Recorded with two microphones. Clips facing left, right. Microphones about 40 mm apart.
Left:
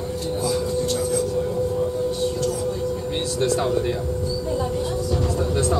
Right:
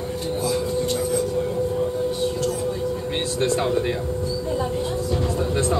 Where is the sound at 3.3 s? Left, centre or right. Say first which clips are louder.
Even; right.